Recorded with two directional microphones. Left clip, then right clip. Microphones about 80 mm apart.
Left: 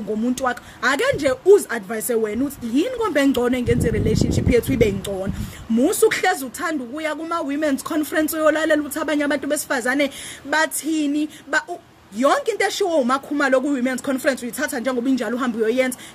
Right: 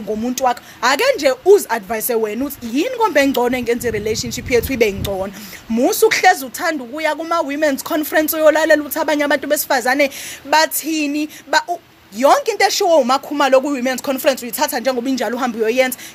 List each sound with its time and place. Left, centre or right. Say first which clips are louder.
0.3 s speech: right 8 dB; left